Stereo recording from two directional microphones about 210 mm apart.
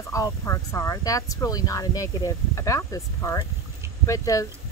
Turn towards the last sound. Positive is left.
turn(degrees=15)  # may be behind; listen again after turning